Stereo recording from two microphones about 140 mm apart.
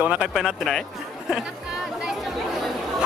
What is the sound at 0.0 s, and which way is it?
Speech, 5° right (ahead or behind).